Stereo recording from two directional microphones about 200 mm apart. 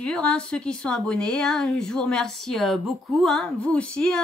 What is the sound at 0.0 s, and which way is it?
A woman's voice, 5° left (ahead or behind).